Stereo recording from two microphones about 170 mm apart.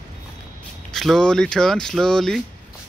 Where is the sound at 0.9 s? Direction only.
5° left (ahead or behind).